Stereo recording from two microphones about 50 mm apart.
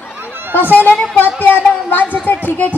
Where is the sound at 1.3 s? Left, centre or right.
Left.